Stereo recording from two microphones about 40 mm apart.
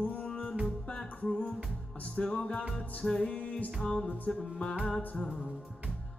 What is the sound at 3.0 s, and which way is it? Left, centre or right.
Music, centre.